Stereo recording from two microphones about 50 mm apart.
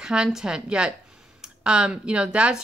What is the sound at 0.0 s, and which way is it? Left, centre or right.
A woman's voice, centre.